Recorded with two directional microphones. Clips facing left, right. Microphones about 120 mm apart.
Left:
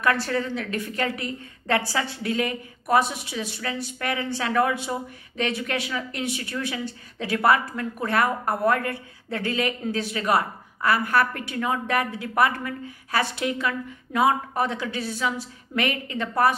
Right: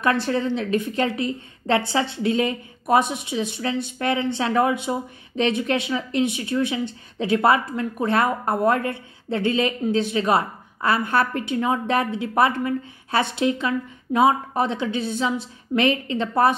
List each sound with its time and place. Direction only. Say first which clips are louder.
0.0 s a woman's voice: right 3 dB; 20° right (ahead or behind)